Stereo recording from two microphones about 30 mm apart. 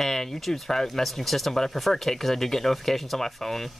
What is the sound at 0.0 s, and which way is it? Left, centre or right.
Speech, centre.